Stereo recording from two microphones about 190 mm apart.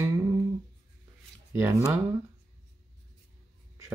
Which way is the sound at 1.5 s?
15° right (ahead or behind).